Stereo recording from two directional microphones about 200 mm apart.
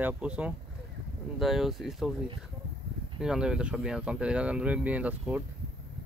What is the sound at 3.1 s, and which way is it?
Speech, 5° right (ahead or behind).